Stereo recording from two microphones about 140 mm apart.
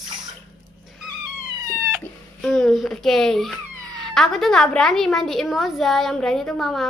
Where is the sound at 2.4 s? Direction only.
Centre (ahead or behind).